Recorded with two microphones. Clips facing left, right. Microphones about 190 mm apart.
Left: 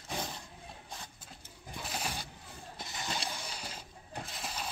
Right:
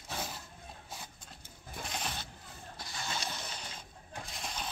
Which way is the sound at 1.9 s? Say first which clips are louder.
Left 1 dB; 10° left (ahead or behind).